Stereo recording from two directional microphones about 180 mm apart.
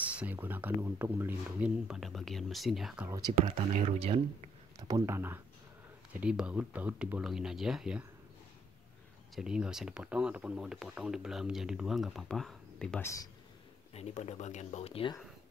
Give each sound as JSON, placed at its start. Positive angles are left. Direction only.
{"t": 0.0, "sound": "speech", "side_deg": -10}
{"t": 3.1, "sound": "speech", "side_deg": -20}
{"t": 4.7, "sound": "speech", "side_deg": -20}
{"t": 9.3, "sound": "speech", "side_deg": -5}
{"t": 13.9, "sound": "speech", "side_deg": 35}